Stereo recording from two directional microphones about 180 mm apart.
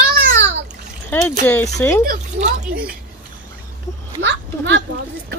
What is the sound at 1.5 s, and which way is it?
Speech, 10° left (ahead or behind).